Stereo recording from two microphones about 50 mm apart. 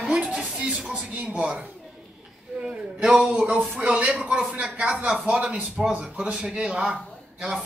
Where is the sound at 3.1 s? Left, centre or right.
Centre.